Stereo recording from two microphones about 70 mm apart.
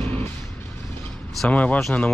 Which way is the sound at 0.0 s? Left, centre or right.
Left.